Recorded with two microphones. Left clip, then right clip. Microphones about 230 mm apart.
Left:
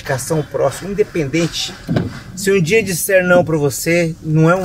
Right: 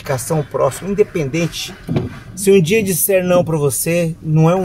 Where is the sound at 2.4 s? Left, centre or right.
Right.